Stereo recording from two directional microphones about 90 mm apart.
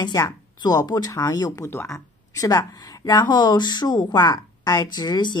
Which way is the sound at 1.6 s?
25° left (ahead or behind).